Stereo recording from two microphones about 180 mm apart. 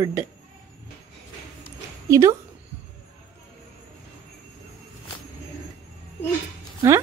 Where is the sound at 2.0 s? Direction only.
15° right (ahead or behind).